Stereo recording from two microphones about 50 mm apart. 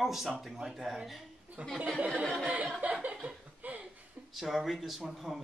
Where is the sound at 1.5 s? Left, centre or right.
Right.